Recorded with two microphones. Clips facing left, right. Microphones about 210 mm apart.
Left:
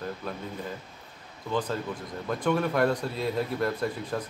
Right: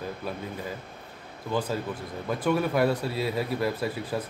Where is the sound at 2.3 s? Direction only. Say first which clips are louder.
Right 1 dB; 5° right (ahead or behind).